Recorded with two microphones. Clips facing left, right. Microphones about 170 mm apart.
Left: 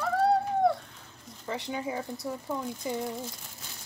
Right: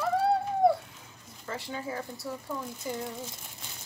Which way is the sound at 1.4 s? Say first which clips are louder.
Left 3 dB; 15° left (ahead or behind).